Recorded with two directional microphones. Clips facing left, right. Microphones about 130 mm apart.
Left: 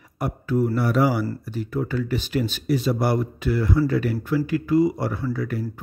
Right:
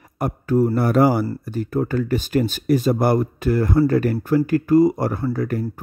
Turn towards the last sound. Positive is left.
turn(degrees=-45)  # may be behind; listen again after turning